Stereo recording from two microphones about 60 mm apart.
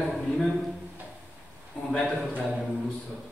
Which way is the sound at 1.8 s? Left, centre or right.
Centre.